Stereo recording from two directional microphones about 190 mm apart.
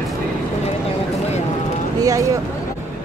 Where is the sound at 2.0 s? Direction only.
15° right (ahead or behind).